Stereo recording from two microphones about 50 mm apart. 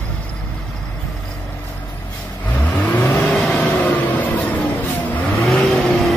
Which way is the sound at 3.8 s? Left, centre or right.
Left.